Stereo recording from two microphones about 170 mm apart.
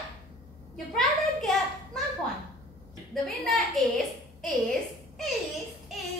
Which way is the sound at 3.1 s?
Centre (ahead or behind).